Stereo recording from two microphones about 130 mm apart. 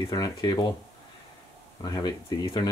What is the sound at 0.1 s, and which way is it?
Speech, 30° left (ahead or behind).